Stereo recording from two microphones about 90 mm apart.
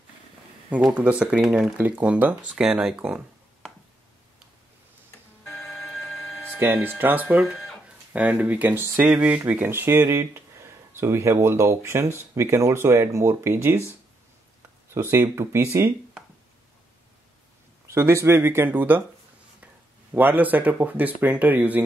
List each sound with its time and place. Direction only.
0.9 s speech: 15° right (ahead or behind)
2.6 s speech: 5° right (ahead or behind)
5.5 s telephone bell ringing: 5° left (ahead or behind)
6.5 s speech: 25° right (ahead or behind)
7.4 s speech: 5° left (ahead or behind)
8.1 s speech: 15° right (ahead or behind)
9.1 s speech: 10° right (ahead or behind)
9.4 s speech: 25° right (ahead or behind)
15.0 s speech: 30° right (ahead or behind)
17.8 s speech: 30° right (ahead or behind)
20.2 s speech: 20° right (ahead or behind)